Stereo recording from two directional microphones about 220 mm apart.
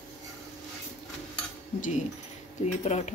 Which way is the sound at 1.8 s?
35° left (ahead or behind).